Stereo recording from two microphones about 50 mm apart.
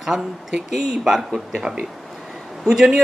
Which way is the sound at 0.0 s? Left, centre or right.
Centre.